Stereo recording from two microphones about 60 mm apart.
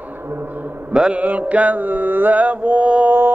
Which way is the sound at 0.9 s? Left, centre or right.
Centre.